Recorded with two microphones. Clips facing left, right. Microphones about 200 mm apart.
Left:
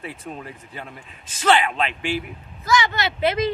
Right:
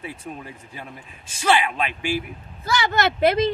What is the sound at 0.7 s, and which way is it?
Speech, 10° right (ahead or behind).